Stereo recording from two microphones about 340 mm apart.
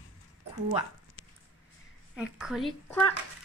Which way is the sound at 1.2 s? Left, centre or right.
Left.